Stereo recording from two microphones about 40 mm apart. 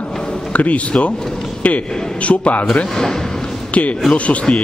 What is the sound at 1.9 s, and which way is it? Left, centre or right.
Speech, centre.